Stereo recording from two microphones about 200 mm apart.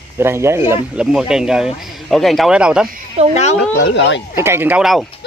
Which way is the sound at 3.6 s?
55° left (ahead or behind).